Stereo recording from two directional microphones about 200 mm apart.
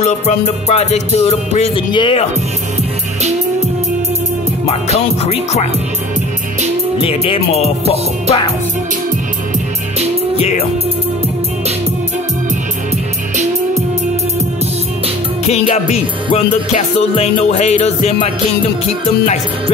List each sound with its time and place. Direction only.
0.0 s music: 35° left (ahead or behind)
4.6 s music: 30° left (ahead or behind)
7.0 s music: 30° left (ahead or behind)
15.4 s music: 35° left (ahead or behind)